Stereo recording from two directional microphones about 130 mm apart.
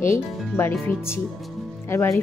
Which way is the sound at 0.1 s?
20° left (ahead or behind).